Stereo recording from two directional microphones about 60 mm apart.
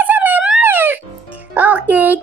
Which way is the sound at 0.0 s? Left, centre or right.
Right.